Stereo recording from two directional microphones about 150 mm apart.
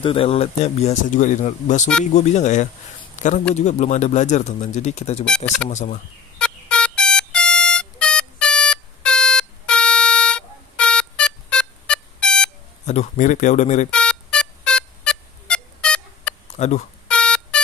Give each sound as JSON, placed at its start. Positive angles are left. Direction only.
{"t": 0.0, "sound": "a man's voice", "side_deg": 40}
{"t": 5.3, "sound": "speech", "side_deg": 5}
{"t": 5.7, "sound": "speech", "side_deg": 55}
{"t": 6.3, "sound": "a sound", "side_deg": 5}
{"t": 12.8, "sound": "speech", "side_deg": 50}
{"t": 13.8, "sound": "a sound", "side_deg": 5}
{"t": 16.5, "sound": "speech", "side_deg": 50}
{"t": 17.1, "sound": "buzzer", "side_deg": 5}